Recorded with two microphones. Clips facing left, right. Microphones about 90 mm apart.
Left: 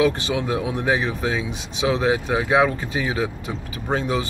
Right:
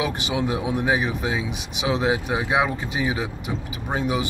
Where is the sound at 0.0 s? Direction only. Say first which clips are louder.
Left 4 dB; 20° right (ahead or behind).